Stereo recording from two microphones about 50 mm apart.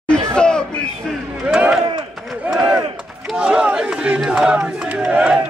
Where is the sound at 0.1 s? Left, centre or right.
Centre.